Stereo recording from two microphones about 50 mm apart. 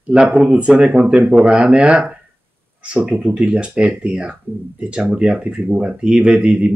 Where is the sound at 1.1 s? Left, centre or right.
Right.